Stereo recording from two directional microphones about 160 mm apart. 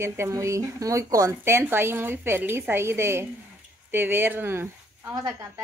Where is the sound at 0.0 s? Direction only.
15° right (ahead or behind).